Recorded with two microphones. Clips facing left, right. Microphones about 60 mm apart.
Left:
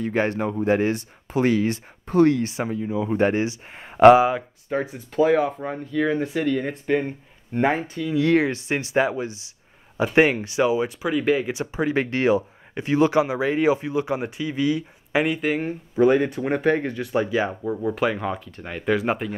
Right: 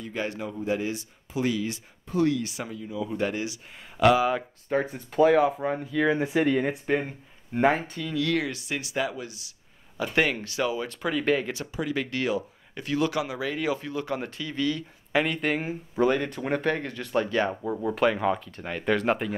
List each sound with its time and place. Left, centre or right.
0.0 s speech: left
4.3 s speech: centre
6.9 s speech: centre
8.1 s speech: left
11.0 s speech: centre
11.6 s speech: left; by 19.3 s centre